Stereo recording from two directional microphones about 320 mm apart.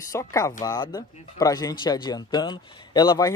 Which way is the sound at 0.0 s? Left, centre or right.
Centre.